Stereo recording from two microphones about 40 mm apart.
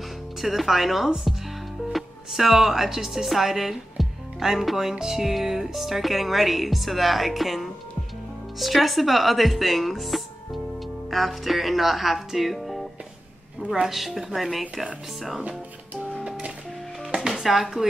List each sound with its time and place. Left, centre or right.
0.4 s speech: centre
13.8 s speech: centre
17.4 s speech: centre